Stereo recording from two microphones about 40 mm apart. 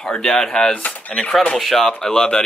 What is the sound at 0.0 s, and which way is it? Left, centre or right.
Speech, centre.